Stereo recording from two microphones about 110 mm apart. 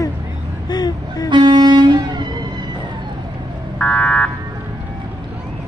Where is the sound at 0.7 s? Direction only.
40° left (ahead or behind).